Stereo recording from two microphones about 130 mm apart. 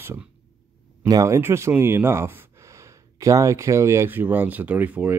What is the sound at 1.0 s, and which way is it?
Speech, 30° right (ahead or behind).